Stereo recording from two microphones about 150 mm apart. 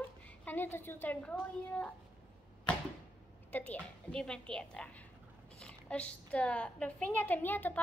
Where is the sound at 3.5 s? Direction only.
10° left (ahead or behind).